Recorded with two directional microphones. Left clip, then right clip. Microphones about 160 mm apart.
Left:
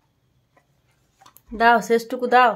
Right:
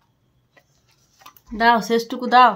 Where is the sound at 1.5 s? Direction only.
10° left (ahead or behind).